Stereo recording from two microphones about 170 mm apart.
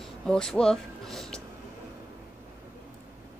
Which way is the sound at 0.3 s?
5° left (ahead or behind).